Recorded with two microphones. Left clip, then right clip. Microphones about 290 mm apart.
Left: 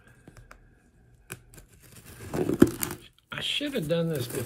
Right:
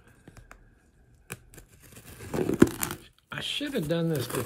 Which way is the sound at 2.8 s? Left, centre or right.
Centre.